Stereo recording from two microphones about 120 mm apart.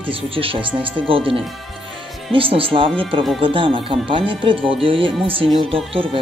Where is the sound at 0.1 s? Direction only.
50° right (ahead or behind).